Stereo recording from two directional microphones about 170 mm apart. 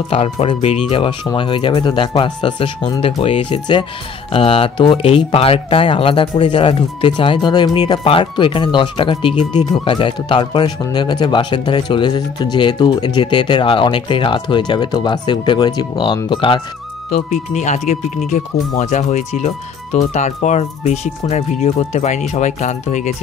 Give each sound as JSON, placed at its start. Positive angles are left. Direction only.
{"t": 0.1, "sound": "speech", "side_deg": 35}
{"t": 9.3, "sound": "speech", "side_deg": -10}
{"t": 9.7, "sound": "speech", "side_deg": 30}
{"t": 17.1, "sound": "speech", "side_deg": 45}